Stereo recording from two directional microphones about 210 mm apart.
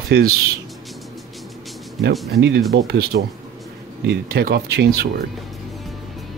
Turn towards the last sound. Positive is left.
turn(degrees=-45)  # may be behind; listen again after turning